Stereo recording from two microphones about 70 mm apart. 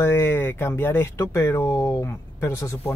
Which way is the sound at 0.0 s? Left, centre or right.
Left.